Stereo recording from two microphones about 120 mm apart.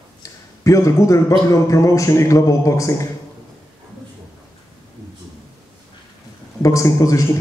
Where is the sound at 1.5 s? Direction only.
25° left (ahead or behind).